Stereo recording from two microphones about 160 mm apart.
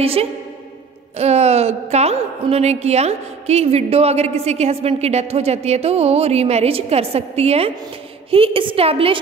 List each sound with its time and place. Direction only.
0.0 s a woman's voice: 35° right (ahead or behind)